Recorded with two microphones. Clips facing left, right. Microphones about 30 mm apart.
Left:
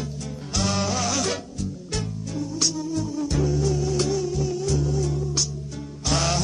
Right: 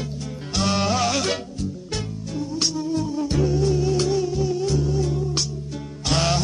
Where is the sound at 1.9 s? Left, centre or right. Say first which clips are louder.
Left 1 dB; centre.